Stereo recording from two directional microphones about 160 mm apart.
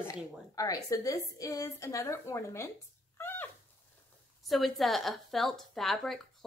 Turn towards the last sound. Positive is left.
turn(degrees=0)  # may be behind; listen again after turning